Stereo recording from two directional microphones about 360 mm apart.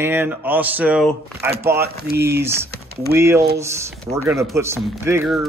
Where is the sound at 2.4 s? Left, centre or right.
Centre.